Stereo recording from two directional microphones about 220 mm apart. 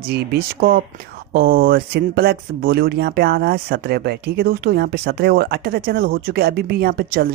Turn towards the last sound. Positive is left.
turn(degrees=-45)  # may be behind; listen again after turning